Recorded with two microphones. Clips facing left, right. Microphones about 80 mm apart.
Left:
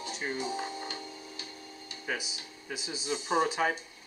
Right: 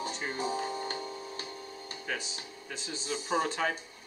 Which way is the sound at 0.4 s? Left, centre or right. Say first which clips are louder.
Right 2 dB; right.